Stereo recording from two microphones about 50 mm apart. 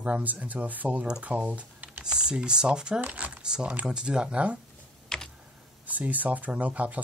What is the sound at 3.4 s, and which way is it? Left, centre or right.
Speech, centre.